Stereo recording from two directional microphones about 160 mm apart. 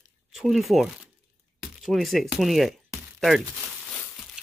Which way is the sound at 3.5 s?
Centre (ahead or behind).